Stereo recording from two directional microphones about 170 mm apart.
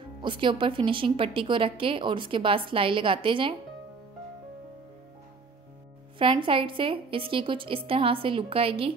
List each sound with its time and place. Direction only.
0.2 s a woman's voice: 30° right (ahead or behind)
6.1 s a woman's voice: 30° right (ahead or behind)